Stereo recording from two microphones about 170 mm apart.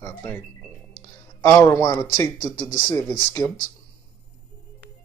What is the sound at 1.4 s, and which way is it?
Speech, 15° left (ahead or behind).